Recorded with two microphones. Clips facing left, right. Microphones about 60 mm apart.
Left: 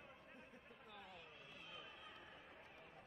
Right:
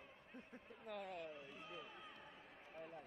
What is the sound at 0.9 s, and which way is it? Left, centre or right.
Speech, right.